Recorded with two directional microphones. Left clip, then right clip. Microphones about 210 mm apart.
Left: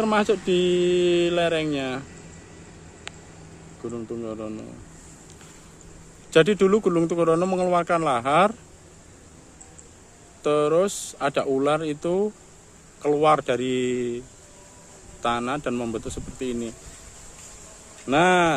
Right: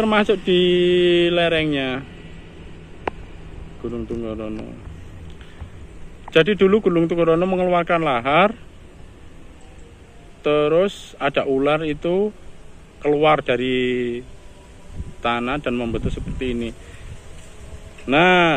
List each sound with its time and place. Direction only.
0.0 s speech: 10° left (ahead or behind)
3.9 s speech: 10° left (ahead or behind)
6.3 s speech: 15° left (ahead or behind)
10.4 s speech: 15° left (ahead or behind)
15.2 s speech: 15° left (ahead or behind)
18.0 s speech: 10° left (ahead or behind)